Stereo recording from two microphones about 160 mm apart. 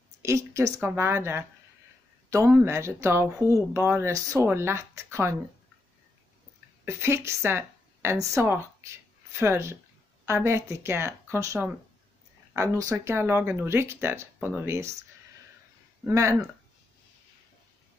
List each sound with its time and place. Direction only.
0.2 s a woman's voice: 20° right (ahead or behind)
6.8 s a woman's voice: 15° right (ahead or behind)
16.1 s speech: 20° right (ahead or behind)